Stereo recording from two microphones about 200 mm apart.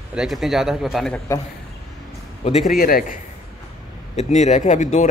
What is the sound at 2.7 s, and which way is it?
Speech, 45° left (ahead or behind).